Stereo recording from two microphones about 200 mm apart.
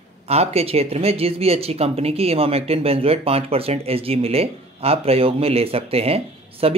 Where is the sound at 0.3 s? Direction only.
30° right (ahead or behind).